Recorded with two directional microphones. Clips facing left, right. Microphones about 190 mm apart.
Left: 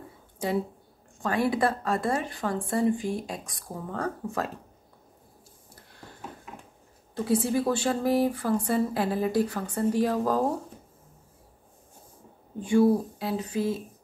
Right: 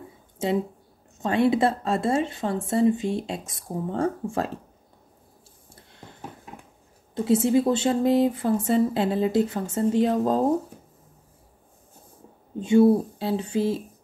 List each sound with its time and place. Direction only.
0.4 s a woman's voice: 25° right (ahead or behind)
5.7 s a sound: 25° right (ahead or behind)
7.2 s a woman's voice: 20° right (ahead or behind)
12.5 s a woman's voice: 25° right (ahead or behind)